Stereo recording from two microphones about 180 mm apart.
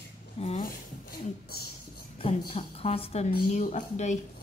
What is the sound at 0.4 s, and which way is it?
Speech, 35° left (ahead or behind).